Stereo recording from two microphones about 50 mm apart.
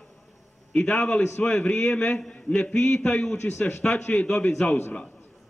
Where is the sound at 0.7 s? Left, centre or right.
Left.